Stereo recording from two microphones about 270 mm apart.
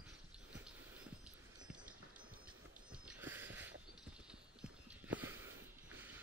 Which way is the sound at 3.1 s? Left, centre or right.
Centre.